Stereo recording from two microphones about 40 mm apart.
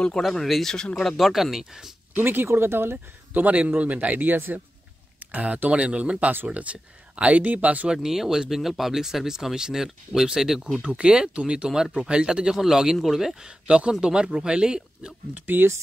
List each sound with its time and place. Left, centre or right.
0.3 s speech: centre
1.2 s speech: centre
2.1 s speech: right
3.3 s speech: right
7.9 s speech: centre
10.8 s speech: right; by 13.5 s centre
13.5 s speech: right
15.3 s speech: right